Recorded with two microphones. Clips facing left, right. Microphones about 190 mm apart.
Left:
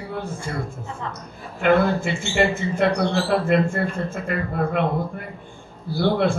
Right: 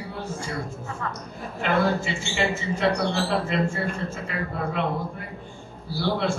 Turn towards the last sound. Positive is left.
turn(degrees=55)  # may be behind; listen again after turning